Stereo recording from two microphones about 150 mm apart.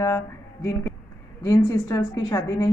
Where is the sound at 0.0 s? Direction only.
20° left (ahead or behind).